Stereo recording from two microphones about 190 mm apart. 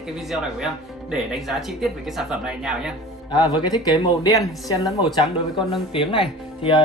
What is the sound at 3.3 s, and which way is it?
Speech, 20° left (ahead or behind).